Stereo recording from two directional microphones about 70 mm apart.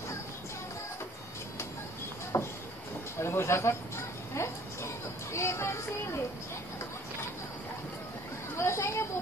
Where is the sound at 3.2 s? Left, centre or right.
Left.